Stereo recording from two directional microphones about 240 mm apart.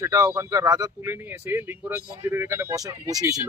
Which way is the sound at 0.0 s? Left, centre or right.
Centre.